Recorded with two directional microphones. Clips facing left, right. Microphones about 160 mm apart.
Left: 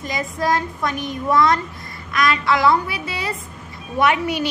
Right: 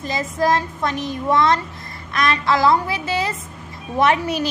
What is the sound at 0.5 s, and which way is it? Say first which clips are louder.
A woman's voice: left 1 dB; 25° right (ahead or behind).